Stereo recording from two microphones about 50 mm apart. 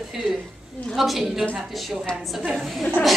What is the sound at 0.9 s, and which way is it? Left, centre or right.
Speech, centre.